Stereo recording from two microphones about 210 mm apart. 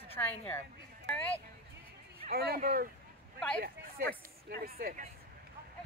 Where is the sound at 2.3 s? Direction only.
45° right (ahead or behind).